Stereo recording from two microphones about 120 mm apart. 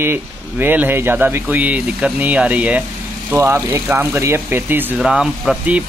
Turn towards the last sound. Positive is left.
turn(degrees=-10)  # may be behind; listen again after turning